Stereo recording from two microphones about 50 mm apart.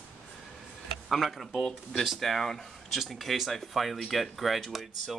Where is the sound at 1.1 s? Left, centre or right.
Centre.